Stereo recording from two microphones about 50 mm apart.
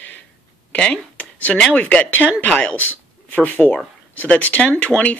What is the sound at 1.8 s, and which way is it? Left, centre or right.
Speech, left.